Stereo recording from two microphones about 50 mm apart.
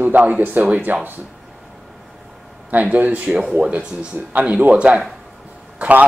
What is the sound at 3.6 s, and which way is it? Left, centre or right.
A man's voice, right.